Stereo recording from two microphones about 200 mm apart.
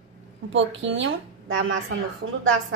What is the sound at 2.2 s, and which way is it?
Speech, 65° right (ahead or behind).